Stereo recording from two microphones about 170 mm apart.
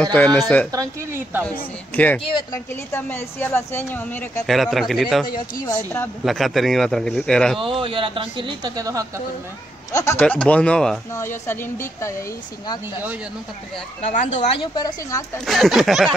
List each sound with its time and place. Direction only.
0.0 s a woman's voice: 5° left (ahead or behind)
0.7 s a woman's voice: 15° right (ahead or behind)
1.4 s a woman's voice: 10° left (ahead or behind)
4.5 s speech: centre (ahead or behind)
5.2 s speech: 25° left (ahead or behind)
6.2 s speech: centre (ahead or behind)
7.6 s speech: 30° right (ahead or behind)
9.9 s a woman's voice: 15° left (ahead or behind)
14.0 s speech: 45° left (ahead or behind)
14.6 s speech: 25° left (ahead or behind)
15.3 s speech: centre (ahead or behind)